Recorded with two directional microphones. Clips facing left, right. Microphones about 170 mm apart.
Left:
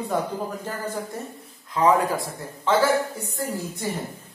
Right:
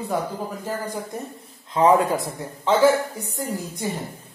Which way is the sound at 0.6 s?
15° right (ahead or behind).